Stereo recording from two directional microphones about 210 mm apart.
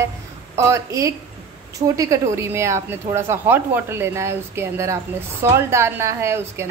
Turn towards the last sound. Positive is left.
turn(degrees=-15)  # may be behind; listen again after turning